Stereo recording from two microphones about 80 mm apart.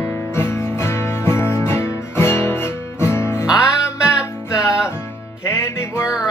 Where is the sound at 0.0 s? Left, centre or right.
Left.